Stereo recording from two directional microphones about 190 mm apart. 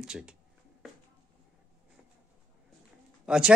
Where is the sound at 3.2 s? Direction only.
5° right (ahead or behind).